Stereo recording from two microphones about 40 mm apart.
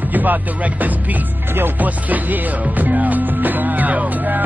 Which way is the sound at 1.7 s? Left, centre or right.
Right.